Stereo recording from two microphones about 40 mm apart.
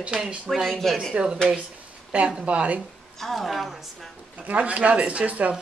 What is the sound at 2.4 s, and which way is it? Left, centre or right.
Speech, right.